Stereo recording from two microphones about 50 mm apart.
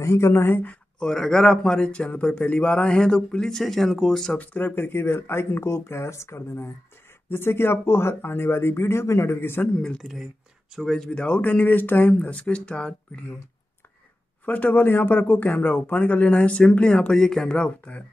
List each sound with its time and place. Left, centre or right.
0.0 s speech: left
0.9 s speech: centre
4.4 s speech: left
7.2 s speech: left
9.4 s speech: left
9.8 s speech: centre
10.7 s speech: centre
11.1 s speech: left
14.4 s speech: left
17.1 s speech: centre; by 18.0 s left